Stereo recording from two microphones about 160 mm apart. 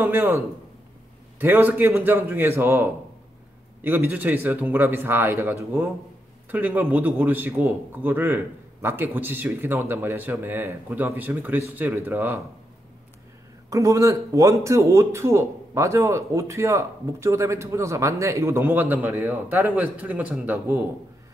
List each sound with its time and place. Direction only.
0.0 s speech: 15° right (ahead or behind)
1.4 s speech: 10° right (ahead or behind)
13.7 s speech: 20° right (ahead or behind)